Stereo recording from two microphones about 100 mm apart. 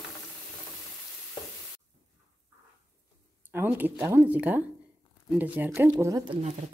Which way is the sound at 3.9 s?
30° right (ahead or behind).